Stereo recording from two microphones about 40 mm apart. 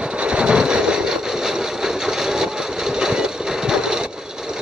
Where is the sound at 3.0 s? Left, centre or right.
Centre.